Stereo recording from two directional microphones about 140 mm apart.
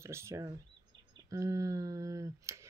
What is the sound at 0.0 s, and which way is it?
Speech, 20° right (ahead or behind).